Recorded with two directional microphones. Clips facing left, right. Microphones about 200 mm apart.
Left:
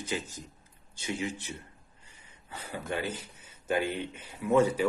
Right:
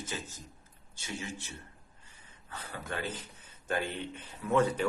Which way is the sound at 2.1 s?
15° left (ahead or behind).